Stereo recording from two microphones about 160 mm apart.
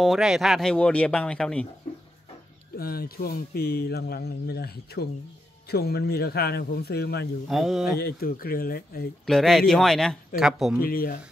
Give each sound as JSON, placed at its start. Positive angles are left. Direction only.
{"t": 0.0, "sound": "speech", "side_deg": 0}
{"t": 2.8, "sound": "speech", "side_deg": 70}
{"t": 7.4, "sound": "speech", "side_deg": 0}
{"t": 8.0, "sound": "speech", "side_deg": 70}
{"t": 9.2, "sound": "speech", "side_deg": 0}
{"t": 10.8, "sound": "speech", "side_deg": 65}